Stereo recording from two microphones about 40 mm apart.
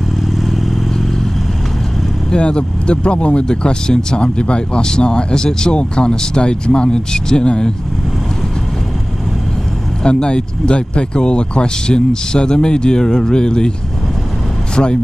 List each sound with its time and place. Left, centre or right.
0.4 s vehicle: centre
2.3 s speech: left
3.4 s speech: centre
10.0 s speech: left
14.8 s speech: left